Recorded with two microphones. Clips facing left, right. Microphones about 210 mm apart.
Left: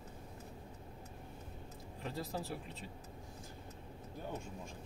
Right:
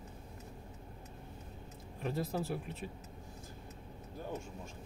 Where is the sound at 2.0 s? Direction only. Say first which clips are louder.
Right 5 dB; 15° right (ahead or behind).